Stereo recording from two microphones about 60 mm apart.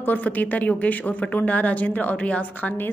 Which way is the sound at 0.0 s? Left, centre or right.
Left.